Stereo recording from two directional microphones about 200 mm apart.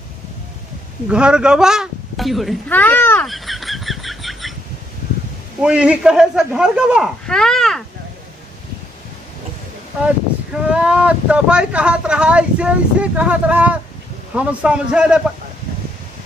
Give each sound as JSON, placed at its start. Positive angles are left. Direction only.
{"t": 1.0, "sound": "a sound", "side_deg": -5}
{"t": 5.6, "sound": "speech", "side_deg": -5}
{"t": 10.0, "sound": "speech", "side_deg": -5}